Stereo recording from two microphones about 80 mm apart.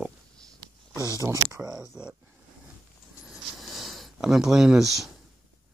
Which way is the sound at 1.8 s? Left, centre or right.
Centre.